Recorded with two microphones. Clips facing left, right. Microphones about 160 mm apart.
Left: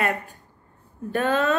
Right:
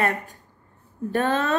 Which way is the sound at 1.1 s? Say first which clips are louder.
Left 1 dB; 40° right (ahead or behind).